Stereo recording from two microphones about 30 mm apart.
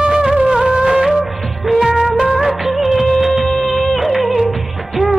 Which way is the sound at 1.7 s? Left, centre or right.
Right.